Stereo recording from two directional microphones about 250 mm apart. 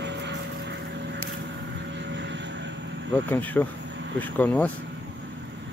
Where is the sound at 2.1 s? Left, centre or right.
Right.